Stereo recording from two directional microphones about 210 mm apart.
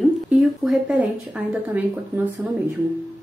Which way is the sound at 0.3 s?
5° right (ahead or behind).